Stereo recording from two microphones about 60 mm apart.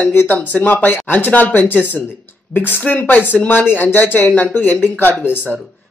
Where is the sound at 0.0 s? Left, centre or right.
Left.